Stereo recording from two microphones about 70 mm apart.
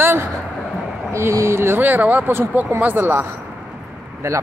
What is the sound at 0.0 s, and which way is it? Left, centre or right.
Vehicle, right.